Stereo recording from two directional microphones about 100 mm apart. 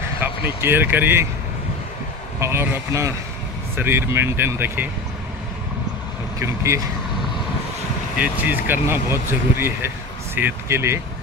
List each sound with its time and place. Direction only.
0.2 s speech: 25° right (ahead or behind)
2.4 s speech: 25° right (ahead or behind)
6.4 s speech: 30° right (ahead or behind)
8.2 s speech: 15° right (ahead or behind)